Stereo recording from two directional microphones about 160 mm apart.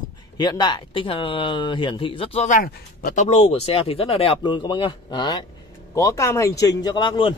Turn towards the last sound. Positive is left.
turn(degrees=30)  # may be behind; listen again after turning